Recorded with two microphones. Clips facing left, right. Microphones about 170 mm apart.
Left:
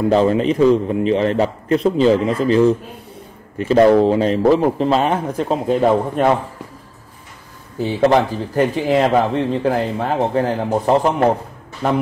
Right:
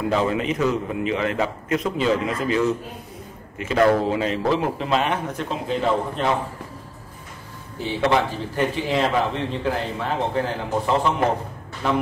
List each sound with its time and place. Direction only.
0.1 s a man's voice: 35° left (ahead or behind)
8.0 s a man's voice: 40° left (ahead or behind)